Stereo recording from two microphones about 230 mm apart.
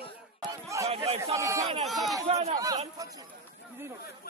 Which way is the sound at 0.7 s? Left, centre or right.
Centre.